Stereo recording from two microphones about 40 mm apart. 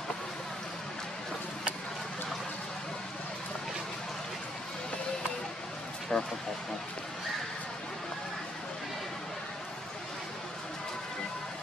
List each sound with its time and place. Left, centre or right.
6.1 s speech: left